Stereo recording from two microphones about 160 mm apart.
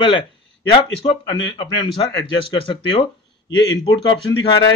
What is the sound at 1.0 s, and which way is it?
A man's voice, 30° left (ahead or behind).